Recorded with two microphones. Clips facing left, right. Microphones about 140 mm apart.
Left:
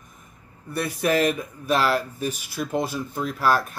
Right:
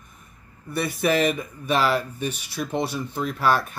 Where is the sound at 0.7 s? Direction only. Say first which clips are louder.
Even; centre (ahead or behind).